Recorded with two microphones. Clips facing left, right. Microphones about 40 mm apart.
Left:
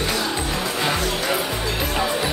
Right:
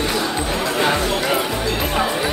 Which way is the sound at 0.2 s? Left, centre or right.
Centre.